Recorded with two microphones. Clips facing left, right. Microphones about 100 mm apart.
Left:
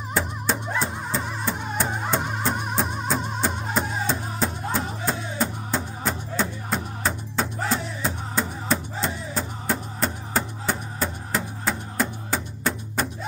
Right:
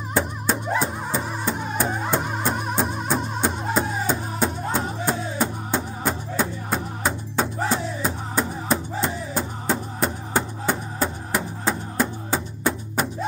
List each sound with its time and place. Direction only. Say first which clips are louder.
0.5 s music: right 3 dB; 10° right (ahead or behind)
3.7 s music: right 2 dB; 15° right (ahead or behind)